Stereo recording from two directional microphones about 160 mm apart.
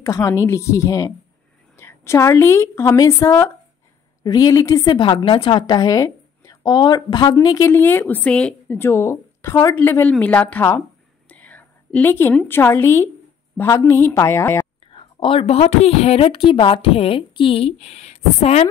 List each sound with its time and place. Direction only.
0.0 s a woman's voice: 20° left (ahead or behind)
14.8 s a woman's voice: 35° left (ahead or behind)